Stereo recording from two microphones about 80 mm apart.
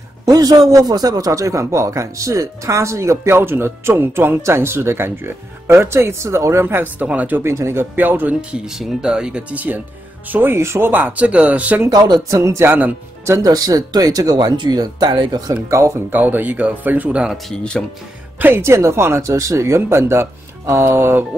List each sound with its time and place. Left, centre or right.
0.2 s a man's voice: right
7.4 s a man's voice: right
7.9 s speech: right
8.4 s speech: centre; by 10.9 s right
10.9 s speech: centre
12.3 s a man's voice: right
13.4 s speech: right
15.7 s a man's voice: right
16.1 s speech: right
17.5 s speech: centre
18.4 s a man's voice: right